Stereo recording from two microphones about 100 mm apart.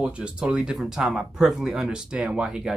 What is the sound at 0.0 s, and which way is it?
Speech, 10° right (ahead or behind).